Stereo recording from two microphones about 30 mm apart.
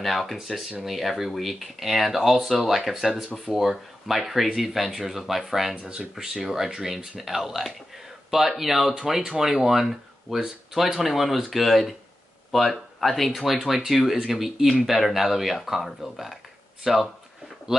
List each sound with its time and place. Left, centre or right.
0.0 s speech: centre
5.9 s speech: right; by 17.1 s centre